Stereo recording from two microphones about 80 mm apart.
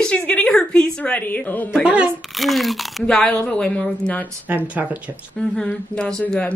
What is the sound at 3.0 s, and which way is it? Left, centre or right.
A woman's voice, centre.